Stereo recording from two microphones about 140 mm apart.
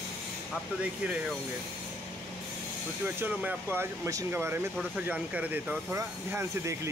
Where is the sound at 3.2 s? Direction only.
15° right (ahead or behind).